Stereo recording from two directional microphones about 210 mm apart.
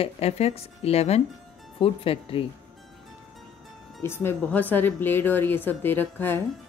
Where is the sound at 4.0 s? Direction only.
10° left (ahead or behind).